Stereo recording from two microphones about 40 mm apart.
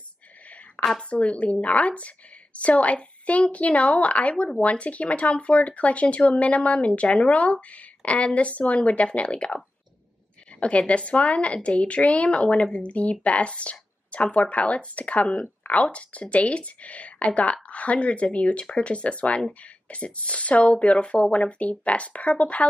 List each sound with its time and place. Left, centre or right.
0.8 s a sound: left
1.1 s speech: left
10.6 s speech: left